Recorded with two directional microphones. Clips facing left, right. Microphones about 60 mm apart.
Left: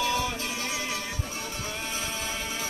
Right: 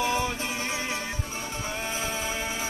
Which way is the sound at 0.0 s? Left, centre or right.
Right.